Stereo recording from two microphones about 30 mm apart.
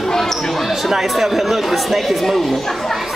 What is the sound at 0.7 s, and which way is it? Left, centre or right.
Speech, centre.